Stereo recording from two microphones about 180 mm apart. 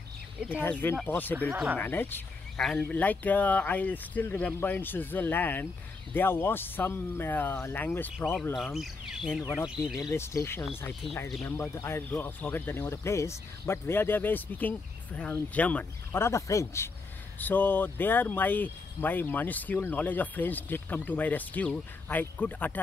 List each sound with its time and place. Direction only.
0.6 s speech: 10° left (ahead or behind)
1.5 s speech: 10° right (ahead or behind)
1.8 s speech: 10° left (ahead or behind)
8.5 s speech: centre (ahead or behind)
9.3 s speech: 15° left (ahead or behind)
9.7 s speech: 5° right (ahead or behind)
10.0 s speech: 15° left (ahead or behind)